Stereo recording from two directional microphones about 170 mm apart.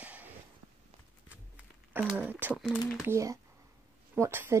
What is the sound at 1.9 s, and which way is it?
Speech, centre (ahead or behind).